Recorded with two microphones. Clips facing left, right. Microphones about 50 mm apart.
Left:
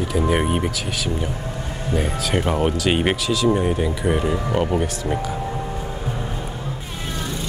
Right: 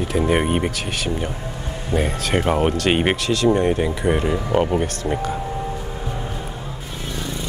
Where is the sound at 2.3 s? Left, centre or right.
Centre.